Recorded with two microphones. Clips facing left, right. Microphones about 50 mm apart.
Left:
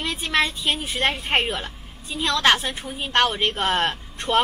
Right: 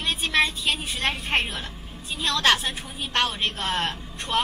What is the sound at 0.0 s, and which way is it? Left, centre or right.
A woman's voice, left.